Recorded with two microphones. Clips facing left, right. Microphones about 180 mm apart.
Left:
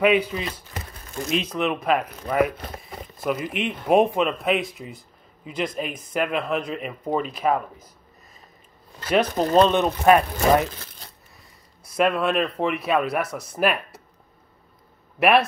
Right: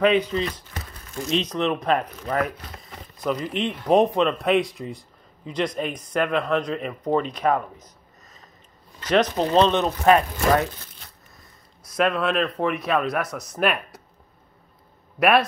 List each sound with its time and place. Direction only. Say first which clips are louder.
0.0 s speech: even; 10° left (ahead or behind)
9.1 s speech: even; 10° left (ahead or behind)
12.0 s speech: left 1 dB; centre (ahead or behind)
13.2 s speech: left 1 dB; 30° left (ahead or behind)